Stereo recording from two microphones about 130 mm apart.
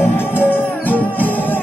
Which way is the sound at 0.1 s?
15° left (ahead or behind).